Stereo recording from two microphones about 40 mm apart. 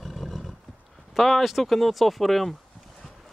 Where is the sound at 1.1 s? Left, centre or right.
Centre.